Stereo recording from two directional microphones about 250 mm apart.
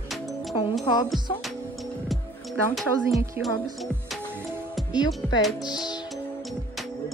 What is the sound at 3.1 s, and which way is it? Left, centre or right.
Speech, centre.